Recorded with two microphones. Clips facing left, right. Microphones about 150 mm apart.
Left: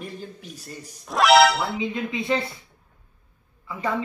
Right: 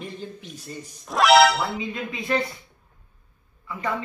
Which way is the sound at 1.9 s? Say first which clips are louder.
Left 1 dB; 20° left (ahead or behind).